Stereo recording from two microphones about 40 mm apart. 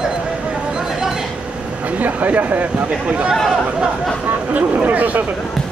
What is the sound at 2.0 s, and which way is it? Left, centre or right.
Speech, right.